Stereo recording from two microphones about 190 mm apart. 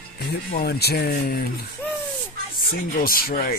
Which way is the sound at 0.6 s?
55° left (ahead or behind).